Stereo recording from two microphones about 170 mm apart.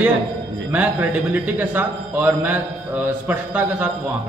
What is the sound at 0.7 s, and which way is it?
A man's voice, 10° right (ahead or behind).